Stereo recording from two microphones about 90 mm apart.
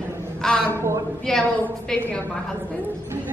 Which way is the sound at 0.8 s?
30° right (ahead or behind).